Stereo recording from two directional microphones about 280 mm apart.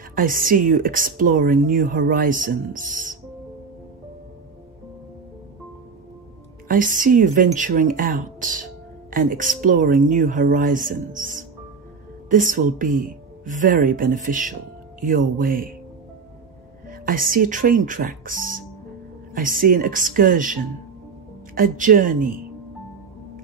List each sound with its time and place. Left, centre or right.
0.1 s speech: right
6.7 s speech: right
16.9 s speech: right
21.5 s speech: right